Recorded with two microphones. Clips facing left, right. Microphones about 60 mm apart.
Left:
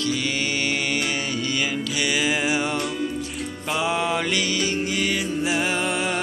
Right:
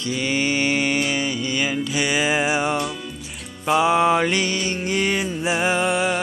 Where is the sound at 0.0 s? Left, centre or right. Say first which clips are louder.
Right 2 dB; right.